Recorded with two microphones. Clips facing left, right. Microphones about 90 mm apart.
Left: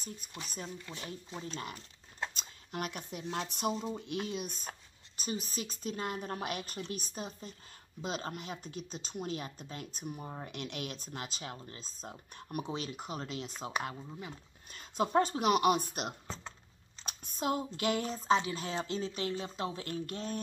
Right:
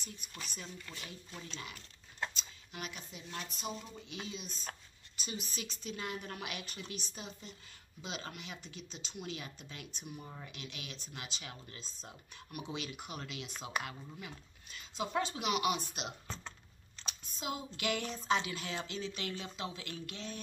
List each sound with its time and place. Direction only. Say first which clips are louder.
0.7 s speech: left 4 dB; 20° left (ahead or behind)
1.0 s speech: left 6 dB; 35° left (ahead or behind)
2.3 s a sound: left 7 dB; 50° left (ahead or behind)
3.4 s speech: left 9 dB; 65° left (ahead or behind)
3.7 s speech: left 9 dB; 30° left (ahead or behind)
4.0 s speech: left 8 dB; 55° left (ahead or behind)
5.1 s speech: left 5 dB; 40° left (ahead or behind)
10.5 s speech: left 8 dB; 55° left (ahead or behind)